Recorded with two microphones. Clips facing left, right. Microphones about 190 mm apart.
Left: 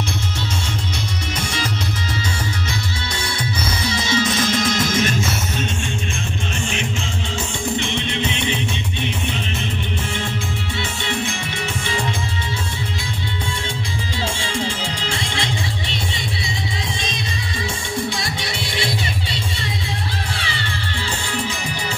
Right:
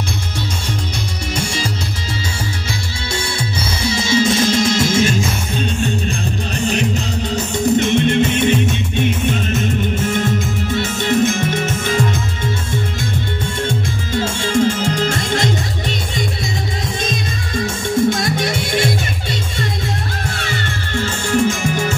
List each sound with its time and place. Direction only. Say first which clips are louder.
3.9 s music: right 6 dB; 30° right (ahead or behind)
6.6 s music: right 10 dB; 40° right (ahead or behind)
13.7 s music: right 6 dB; 45° right (ahead or behind)
17.0 s music: right 5 dB; 45° right (ahead or behind)
20.3 s music: right 4 dB; 45° right (ahead or behind)